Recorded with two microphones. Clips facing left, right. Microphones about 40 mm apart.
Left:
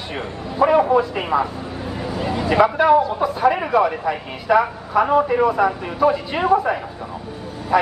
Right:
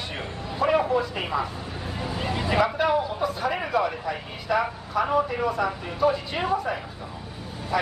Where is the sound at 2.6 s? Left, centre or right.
Centre.